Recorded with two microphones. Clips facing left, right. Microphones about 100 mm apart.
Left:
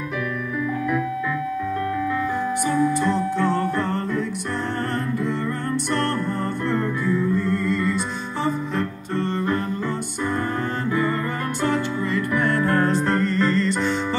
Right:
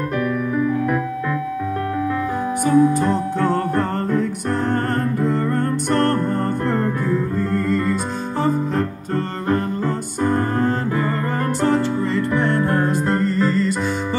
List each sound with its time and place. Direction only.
2.6 s music: 40° right (ahead or behind)
5.9 s music: 45° right (ahead or behind); by 13.7 s 5° right (ahead or behind)